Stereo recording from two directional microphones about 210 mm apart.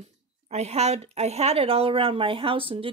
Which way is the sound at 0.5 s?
30° right (ahead or behind).